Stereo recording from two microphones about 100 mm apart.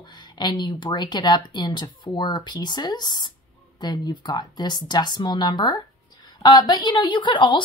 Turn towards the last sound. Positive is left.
turn(degrees=55)  # may be behind; listen again after turning